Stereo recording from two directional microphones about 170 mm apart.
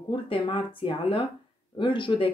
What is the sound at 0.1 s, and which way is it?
Speech, 30° left (ahead or behind).